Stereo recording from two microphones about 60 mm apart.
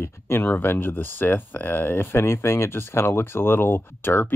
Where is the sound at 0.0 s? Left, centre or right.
Left.